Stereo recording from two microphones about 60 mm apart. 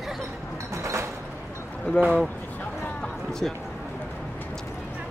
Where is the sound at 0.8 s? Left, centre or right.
Right.